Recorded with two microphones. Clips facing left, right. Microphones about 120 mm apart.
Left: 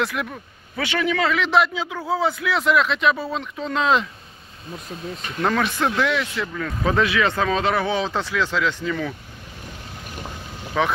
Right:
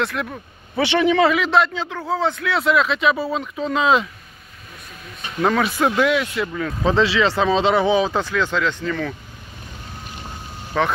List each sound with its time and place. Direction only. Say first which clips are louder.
0.0 s speech: right 1 dB; centre (ahead or behind)
0.7 s speech: right 6 dB; 25° right (ahead or behind)
1.4 s speech: right 1 dB; centre (ahead or behind)
5.4 s speech: right 3 dB; 5° right (ahead or behind)
6.8 s speech: right 2 dB; 25° right (ahead or behind)
7.9 s speech: right 5 dB; 5° right (ahead or behind)
10.8 s speech: right 1 dB; centre (ahead or behind)